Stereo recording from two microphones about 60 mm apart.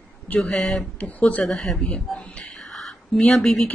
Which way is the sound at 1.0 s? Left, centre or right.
Left.